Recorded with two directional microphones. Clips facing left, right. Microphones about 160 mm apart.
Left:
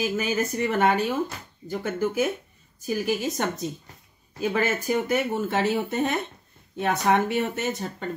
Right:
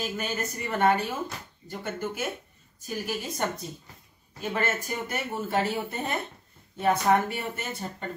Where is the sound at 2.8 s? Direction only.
90° left.